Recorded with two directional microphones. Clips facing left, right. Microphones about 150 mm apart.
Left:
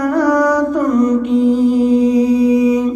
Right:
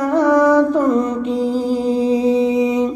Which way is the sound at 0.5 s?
25° right (ahead or behind).